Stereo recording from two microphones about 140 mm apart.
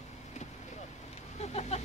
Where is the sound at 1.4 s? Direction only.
50° left (ahead or behind).